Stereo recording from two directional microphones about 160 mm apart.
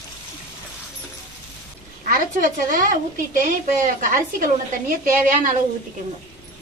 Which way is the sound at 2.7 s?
55° right (ahead or behind).